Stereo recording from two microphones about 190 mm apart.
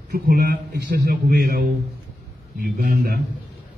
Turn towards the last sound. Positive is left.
turn(degrees=-50)  # may be behind; listen again after turning